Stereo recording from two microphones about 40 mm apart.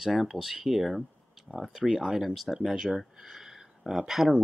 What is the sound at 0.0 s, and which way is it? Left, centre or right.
Speech, centre.